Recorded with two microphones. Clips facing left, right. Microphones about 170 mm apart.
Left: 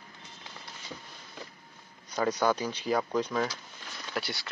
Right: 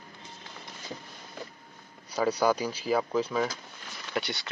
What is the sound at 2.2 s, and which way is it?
Speech, 10° right (ahead or behind).